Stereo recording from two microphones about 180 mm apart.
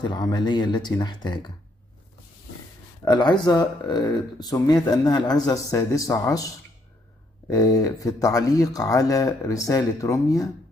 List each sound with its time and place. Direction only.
0.0 s speech: 25° left (ahead or behind)
3.1 s speech: 25° left (ahead or behind)